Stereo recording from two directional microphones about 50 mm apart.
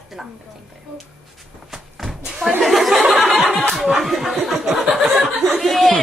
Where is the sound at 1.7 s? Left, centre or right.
Centre.